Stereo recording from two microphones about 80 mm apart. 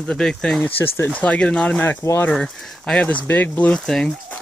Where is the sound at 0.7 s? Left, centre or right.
Left.